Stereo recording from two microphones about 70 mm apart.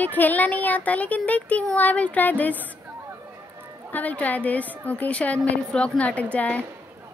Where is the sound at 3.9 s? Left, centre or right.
Left.